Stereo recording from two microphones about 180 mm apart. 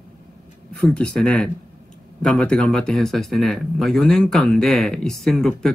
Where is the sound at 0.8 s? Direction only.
5° left (ahead or behind).